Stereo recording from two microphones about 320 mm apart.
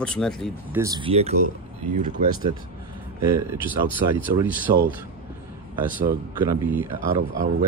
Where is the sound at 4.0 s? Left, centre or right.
Centre.